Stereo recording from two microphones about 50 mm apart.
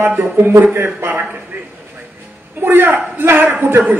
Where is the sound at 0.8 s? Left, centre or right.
Right.